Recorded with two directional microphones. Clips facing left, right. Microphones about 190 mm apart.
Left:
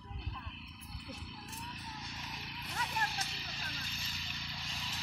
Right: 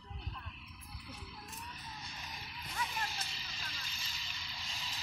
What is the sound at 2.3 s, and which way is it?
Vehicle, 70° left (ahead or behind).